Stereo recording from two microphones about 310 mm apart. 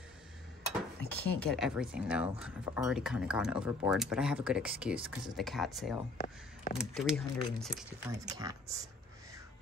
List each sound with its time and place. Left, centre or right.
1.0 s speech: centre
6.1 s speech: left
6.8 s speech: centre
8.1 s speech: centre